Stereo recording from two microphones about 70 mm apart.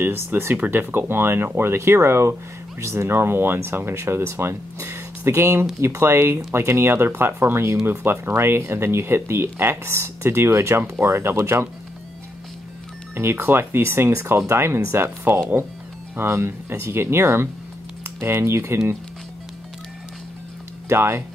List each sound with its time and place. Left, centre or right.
0.0 s speech: right
13.1 s speech: right
20.9 s speech: right